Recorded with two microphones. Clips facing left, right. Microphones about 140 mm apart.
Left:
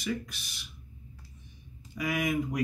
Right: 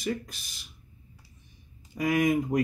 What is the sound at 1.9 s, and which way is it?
Speech, 45° right (ahead or behind).